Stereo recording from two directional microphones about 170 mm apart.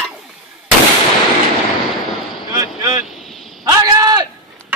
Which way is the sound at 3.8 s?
25° right (ahead or behind).